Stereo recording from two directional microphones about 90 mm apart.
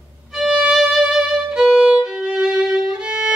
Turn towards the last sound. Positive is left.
turn(degrees=-10)  # may be behind; listen again after turning